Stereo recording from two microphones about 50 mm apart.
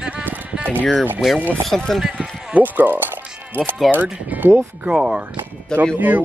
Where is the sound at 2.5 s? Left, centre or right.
Right.